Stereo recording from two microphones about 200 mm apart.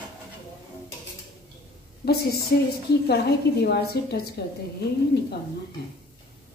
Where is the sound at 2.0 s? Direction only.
50° left (ahead or behind).